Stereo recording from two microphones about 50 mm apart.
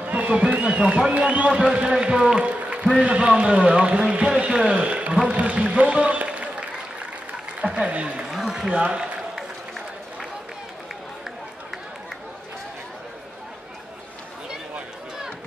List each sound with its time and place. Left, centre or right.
0.0 s a man's voice: right
5.3 s music: right
7.7 s a man's voice: right
8.3 s speech: centre
8.8 s a sound: centre